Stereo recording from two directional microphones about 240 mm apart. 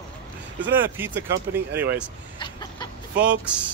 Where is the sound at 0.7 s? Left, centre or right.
Centre.